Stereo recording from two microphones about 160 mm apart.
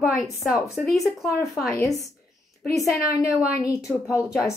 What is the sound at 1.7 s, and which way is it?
A woman's voice, 20° left (ahead or behind).